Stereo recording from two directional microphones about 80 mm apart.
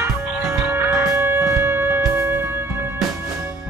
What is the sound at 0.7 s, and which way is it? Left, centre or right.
Music, right.